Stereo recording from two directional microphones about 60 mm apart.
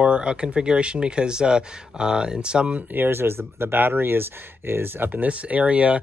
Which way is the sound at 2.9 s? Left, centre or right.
Right.